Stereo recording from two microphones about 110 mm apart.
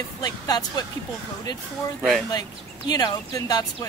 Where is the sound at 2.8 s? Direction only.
35° left (ahead or behind).